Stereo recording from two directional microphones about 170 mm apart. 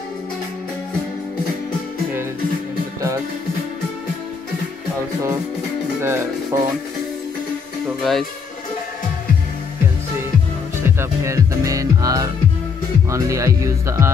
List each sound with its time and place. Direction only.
5.9 s speech: 15° right (ahead or behind)
8.0 s speech: centre (ahead or behind)
11.0 s music: 20° right (ahead or behind)
13.1 s speech: 15° right (ahead or behind)